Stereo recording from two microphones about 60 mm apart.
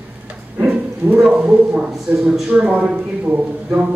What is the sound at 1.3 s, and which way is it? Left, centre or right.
Speech, right.